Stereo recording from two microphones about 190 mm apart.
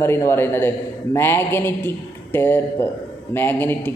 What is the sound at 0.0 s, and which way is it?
A man's voice, 10° left (ahead or behind).